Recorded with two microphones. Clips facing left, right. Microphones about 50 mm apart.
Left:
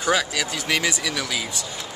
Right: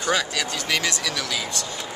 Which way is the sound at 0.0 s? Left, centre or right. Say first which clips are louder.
Left 1 dB; centre.